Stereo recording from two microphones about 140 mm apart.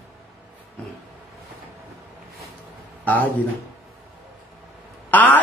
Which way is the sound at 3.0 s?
10° left (ahead or behind).